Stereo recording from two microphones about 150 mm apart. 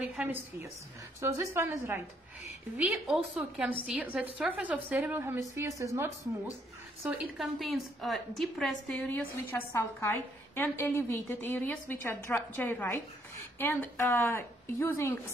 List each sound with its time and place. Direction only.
0.0 s a woman's voice: 10° right (ahead or behind)
7.3 s a woman's voice: centre (ahead or behind)
9.0 s a woman's voice: 10° left (ahead or behind)